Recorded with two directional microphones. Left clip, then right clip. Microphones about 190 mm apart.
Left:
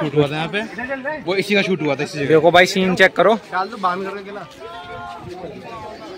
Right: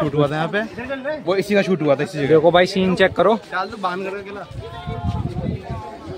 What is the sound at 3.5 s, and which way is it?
Speech, 55° left (ahead or behind).